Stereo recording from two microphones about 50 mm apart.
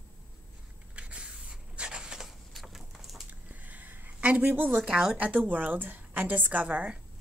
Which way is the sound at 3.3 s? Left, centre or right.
Right.